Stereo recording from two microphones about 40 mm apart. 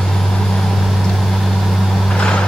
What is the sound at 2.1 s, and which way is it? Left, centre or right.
Vehicle, left.